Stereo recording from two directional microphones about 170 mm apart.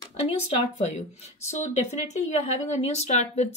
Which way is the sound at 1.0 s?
40° left (ahead or behind).